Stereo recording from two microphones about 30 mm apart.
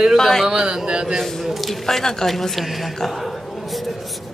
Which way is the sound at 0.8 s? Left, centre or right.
Right.